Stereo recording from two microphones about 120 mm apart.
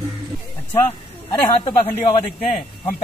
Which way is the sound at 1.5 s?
50° left (ahead or behind).